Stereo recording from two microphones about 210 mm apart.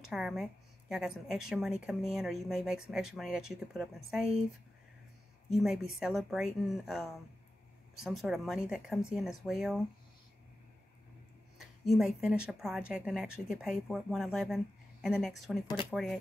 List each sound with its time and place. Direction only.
0.1 s a woman's voice: centre (ahead or behind)
5.5 s a woman's voice: centre (ahead or behind)
11.5 s a woman's voice: centre (ahead or behind)
15.6 s speech: 20° left (ahead or behind)
15.9 s a woman's voice: centre (ahead or behind)